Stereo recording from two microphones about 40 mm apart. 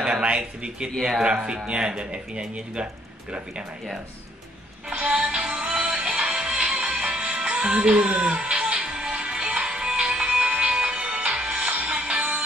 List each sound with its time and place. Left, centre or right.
0.0 s speech: right
4.8 s speech: right
5.3 s music: right